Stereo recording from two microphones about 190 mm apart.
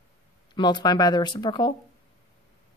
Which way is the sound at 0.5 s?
25° left (ahead or behind).